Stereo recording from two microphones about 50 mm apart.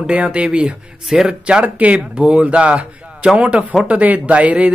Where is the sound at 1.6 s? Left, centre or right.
Right.